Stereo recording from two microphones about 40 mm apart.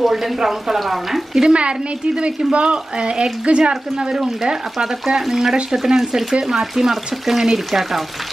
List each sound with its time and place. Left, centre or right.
0.0 s speech: centre
1.5 s speech: right
4.7 s speech: centre